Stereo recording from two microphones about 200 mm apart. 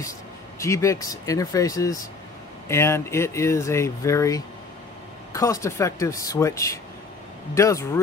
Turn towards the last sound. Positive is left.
turn(degrees=15)  # may be behind; listen again after turning